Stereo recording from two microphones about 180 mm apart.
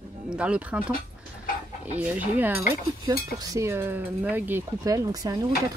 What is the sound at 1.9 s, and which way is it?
Cutlery, 10° right (ahead or behind).